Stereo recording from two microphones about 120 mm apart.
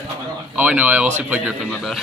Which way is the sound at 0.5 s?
10° right (ahead or behind).